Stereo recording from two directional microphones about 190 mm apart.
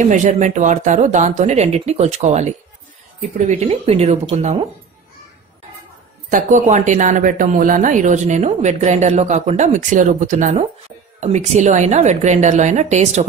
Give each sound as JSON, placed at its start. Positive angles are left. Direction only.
{"t": 0.0, "sound": "speech", "side_deg": -40}
{"t": 6.3, "sound": "speech", "side_deg": -40}